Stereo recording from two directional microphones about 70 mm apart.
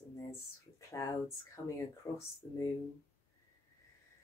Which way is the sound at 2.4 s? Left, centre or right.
Left.